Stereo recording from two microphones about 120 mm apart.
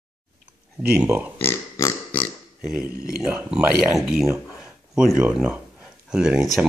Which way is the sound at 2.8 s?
10° right (ahead or behind).